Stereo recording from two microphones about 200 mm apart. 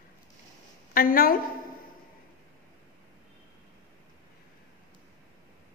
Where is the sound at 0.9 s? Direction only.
45° left (ahead or behind).